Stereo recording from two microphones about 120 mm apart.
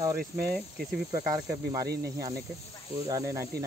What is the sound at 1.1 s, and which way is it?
Speech, 25° right (ahead or behind).